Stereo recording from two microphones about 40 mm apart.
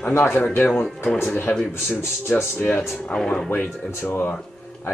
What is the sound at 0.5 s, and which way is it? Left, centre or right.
Speech, left.